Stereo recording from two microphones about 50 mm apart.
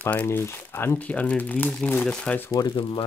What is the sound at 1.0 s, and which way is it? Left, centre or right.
Speech, left.